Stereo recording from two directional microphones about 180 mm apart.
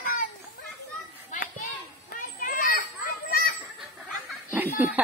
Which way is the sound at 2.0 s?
50° left (ahead or behind).